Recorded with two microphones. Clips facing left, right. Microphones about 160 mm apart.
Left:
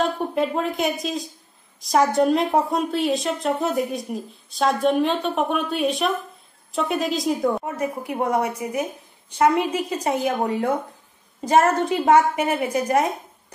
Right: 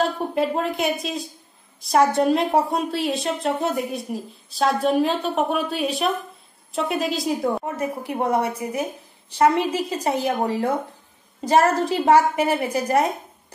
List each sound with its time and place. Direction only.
0.0 s a woman's voice: centre (ahead or behind)
7.6 s a woman's voice: 30° right (ahead or behind)